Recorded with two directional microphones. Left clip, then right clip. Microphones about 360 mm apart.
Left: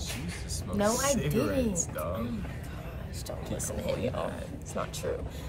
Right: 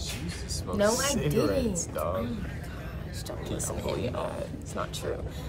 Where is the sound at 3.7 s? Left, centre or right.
Centre.